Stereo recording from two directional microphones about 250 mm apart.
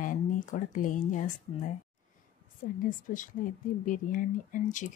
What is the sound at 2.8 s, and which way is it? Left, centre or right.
Speech, left.